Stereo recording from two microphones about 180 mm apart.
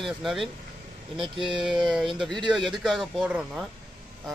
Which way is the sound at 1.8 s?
Centre (ahead or behind).